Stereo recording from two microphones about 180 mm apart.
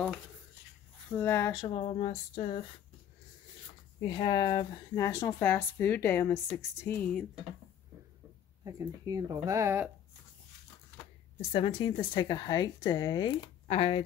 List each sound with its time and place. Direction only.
1.0 s speech: 10° left (ahead or behind)
1.7 s speech: 35° left (ahead or behind)
4.0 s speech: 25° left (ahead or behind); by 7.2 s 5° left (ahead or behind)
8.6 s speech: 20° right (ahead or behind)
11.5 s speech: 30° left (ahead or behind)